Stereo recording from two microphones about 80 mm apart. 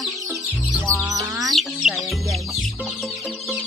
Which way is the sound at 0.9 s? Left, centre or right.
Right.